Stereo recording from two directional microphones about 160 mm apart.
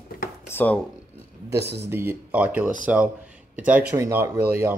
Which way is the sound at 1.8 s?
15° right (ahead or behind).